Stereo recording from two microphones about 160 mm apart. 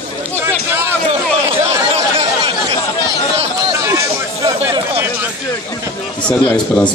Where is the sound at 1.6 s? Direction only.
40° right (ahead or behind).